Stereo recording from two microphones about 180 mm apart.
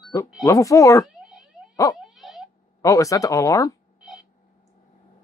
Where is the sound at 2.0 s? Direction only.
Centre (ahead or behind).